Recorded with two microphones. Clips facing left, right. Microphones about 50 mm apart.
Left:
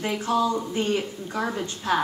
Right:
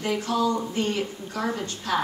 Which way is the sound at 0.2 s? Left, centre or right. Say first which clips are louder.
Left 1 dB; left.